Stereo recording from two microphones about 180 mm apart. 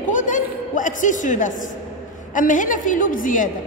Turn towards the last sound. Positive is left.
turn(degrees=50)  # may be behind; listen again after turning